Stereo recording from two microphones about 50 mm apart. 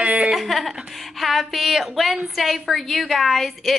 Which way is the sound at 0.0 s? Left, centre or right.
Right.